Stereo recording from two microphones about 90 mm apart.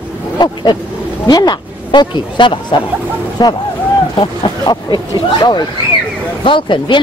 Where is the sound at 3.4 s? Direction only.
50° left (ahead or behind).